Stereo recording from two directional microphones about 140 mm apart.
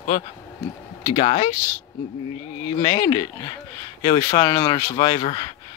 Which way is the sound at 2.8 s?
30° left (ahead or behind).